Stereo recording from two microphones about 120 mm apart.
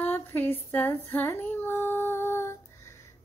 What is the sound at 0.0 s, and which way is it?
Female singing, 15° left (ahead or behind).